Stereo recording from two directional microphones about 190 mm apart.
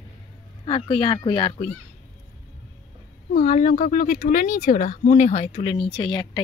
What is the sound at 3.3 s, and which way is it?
A woman's voice, 40° left (ahead or behind).